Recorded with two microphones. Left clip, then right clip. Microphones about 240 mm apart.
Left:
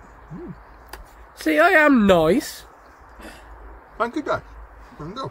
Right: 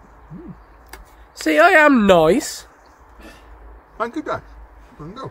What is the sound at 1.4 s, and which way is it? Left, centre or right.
Speech, right.